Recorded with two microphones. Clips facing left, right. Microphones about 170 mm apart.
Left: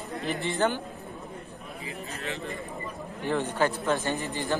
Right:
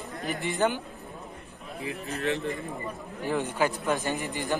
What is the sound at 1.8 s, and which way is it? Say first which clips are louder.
Speech: right 7 dB; 65° right (ahead or behind).